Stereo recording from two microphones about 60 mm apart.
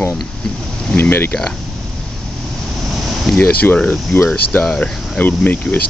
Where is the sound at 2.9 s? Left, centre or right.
Centre.